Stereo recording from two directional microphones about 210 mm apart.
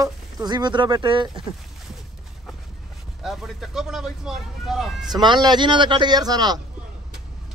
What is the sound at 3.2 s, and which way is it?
Speech, centre (ahead or behind).